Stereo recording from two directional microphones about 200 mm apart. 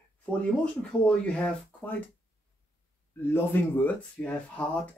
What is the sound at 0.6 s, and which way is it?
Speech, 5° left (ahead or behind).